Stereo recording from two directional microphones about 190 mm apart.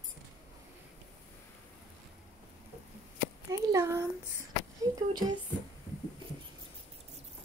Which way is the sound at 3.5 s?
15° right (ahead or behind).